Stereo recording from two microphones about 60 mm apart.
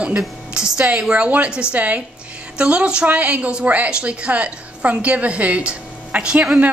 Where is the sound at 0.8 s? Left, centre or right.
Centre.